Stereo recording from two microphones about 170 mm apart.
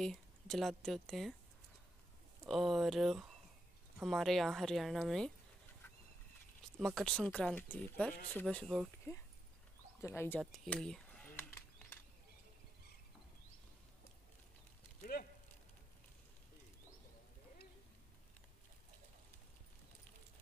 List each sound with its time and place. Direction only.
0.0 s speech: centre (ahead or behind)
2.4 s speech: centre (ahead or behind)
7.0 s speech: 5° left (ahead or behind)
10.0 s speech: 15° left (ahead or behind)
10.4 s a sound: centre (ahead or behind)
15.2 s speech: 65° left (ahead or behind)